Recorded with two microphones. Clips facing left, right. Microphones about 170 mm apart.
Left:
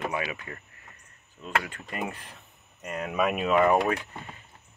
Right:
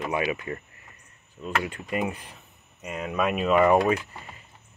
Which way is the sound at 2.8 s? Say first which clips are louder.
Even; centre (ahead or behind).